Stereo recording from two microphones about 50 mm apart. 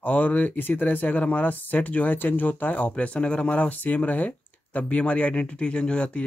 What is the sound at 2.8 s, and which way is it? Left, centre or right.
Speech, left.